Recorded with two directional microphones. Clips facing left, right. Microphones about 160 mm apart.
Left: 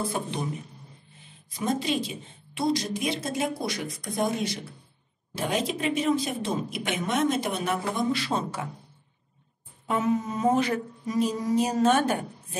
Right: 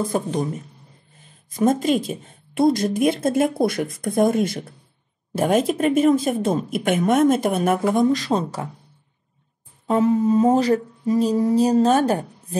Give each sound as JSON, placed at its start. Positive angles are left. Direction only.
{"t": 0.1, "sound": "mantra", "side_deg": -40}
{"t": 1.5, "sound": "speech", "side_deg": -45}
{"t": 9.8, "sound": "mantra", "side_deg": -30}